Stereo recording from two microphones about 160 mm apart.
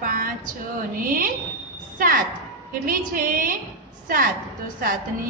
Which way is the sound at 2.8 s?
60° right (ahead or behind).